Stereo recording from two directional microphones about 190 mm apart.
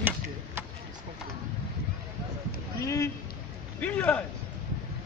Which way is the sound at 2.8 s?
15° left (ahead or behind).